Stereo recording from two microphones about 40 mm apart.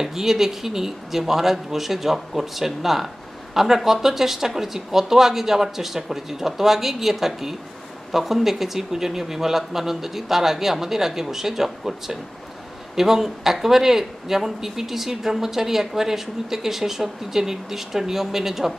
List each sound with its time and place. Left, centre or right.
0.0 s speech: centre